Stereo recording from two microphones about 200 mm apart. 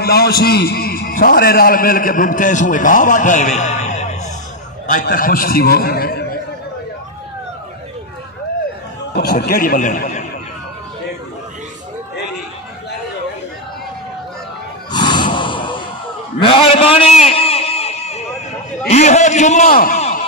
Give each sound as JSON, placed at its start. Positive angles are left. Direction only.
{"t": 0.0, "sound": "a man's voice", "side_deg": 50}
{"t": 9.3, "sound": "speech", "side_deg": 45}
{"t": 14.9, "sound": "snort", "side_deg": 20}
{"t": 16.3, "sound": "a sound", "side_deg": 25}
{"t": 18.9, "sound": "a man's voice", "side_deg": 35}